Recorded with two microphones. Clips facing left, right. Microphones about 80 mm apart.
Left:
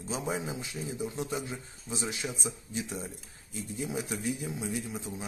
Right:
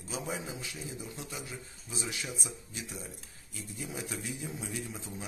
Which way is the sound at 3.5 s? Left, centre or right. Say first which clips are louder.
Left 6 dB; left.